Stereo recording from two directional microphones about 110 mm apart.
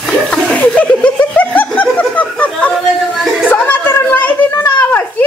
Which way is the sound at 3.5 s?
15° left (ahead or behind).